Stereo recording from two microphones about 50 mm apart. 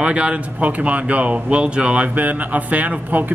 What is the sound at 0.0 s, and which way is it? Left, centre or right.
Speech, right.